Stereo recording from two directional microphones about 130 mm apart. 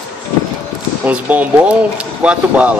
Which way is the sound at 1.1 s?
10° right (ahead or behind).